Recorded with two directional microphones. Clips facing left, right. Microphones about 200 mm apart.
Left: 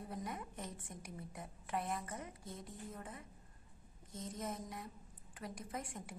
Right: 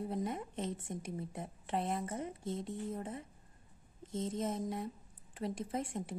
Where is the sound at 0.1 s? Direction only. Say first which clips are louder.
Right 7 dB; 25° right (ahead or behind).